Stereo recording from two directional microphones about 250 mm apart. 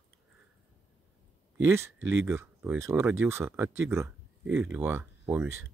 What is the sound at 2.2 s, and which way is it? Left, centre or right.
Speech, centre.